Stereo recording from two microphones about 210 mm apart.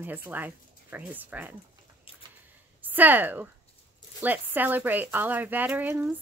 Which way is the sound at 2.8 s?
10° right (ahead or behind).